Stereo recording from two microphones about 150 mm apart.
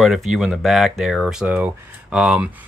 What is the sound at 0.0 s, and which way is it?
Speech, 5° right (ahead or behind).